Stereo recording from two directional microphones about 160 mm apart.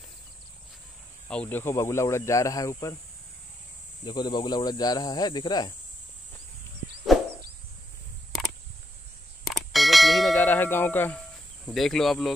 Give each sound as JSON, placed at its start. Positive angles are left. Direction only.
{"t": 1.3, "sound": "speech", "side_deg": 10}
{"t": 4.0, "sound": "speech", "side_deg": 30}
{"t": 9.5, "sound": "church bell", "side_deg": 0}